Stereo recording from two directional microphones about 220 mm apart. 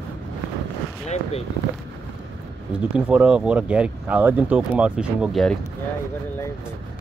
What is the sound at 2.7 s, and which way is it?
Speech, 5° right (ahead or behind).